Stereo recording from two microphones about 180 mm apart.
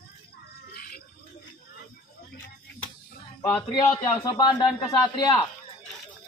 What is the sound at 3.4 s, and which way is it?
A man's voice, 20° left (ahead or behind).